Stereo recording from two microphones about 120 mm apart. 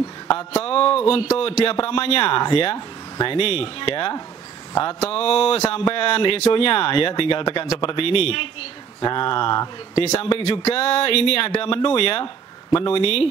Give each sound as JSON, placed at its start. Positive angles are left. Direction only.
{"t": 0.3, "sound": "speech", "side_deg": 55}
{"t": 7.6, "sound": "speech", "side_deg": 55}